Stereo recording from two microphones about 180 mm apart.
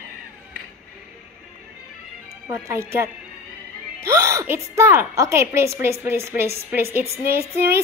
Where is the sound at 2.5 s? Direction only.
15° right (ahead or behind).